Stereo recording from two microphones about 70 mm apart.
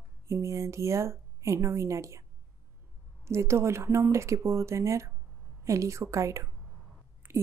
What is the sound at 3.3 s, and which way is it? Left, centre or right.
A woman's voice, right.